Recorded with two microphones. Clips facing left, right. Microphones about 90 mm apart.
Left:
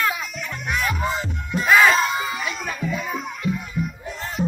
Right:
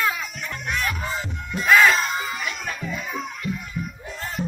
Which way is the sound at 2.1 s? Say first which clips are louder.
Left 2 dB; 15° left (ahead or behind).